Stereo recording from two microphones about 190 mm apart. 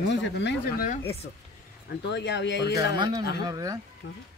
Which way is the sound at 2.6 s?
20° right (ahead or behind).